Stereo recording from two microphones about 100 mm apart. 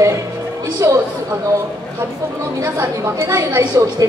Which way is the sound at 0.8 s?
30° right (ahead or behind).